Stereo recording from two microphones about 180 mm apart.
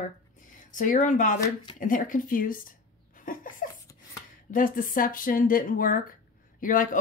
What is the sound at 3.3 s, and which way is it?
Laughter, 50° left (ahead or behind).